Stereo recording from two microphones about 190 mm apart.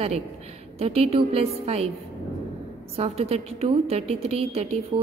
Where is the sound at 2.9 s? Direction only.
35° right (ahead or behind).